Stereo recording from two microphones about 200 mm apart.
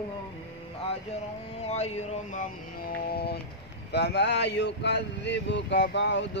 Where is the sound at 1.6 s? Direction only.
30° left (ahead or behind).